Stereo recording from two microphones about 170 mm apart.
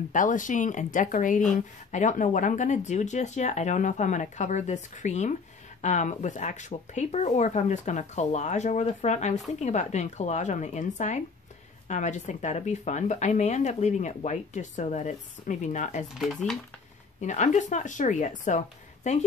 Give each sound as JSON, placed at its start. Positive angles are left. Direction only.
{"t": 0.1, "sound": "speech", "side_deg": 50}
{"t": 16.2, "sound": "speech", "side_deg": 0}
{"t": 17.2, "sound": "speech", "side_deg": 45}